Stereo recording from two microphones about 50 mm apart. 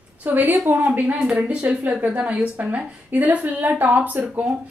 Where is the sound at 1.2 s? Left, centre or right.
Right.